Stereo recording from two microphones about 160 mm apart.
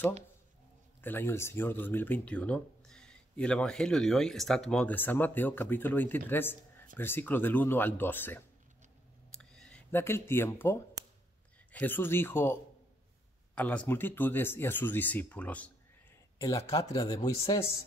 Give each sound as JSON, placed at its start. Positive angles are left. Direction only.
{"t": 1.0, "sound": "speech", "side_deg": 15}
{"t": 9.3, "sound": "a sound", "side_deg": 5}
{"t": 11.7, "sound": "speech", "side_deg": 10}
{"t": 13.6, "sound": "speech", "side_deg": 10}
{"t": 16.3, "sound": "speech", "side_deg": 25}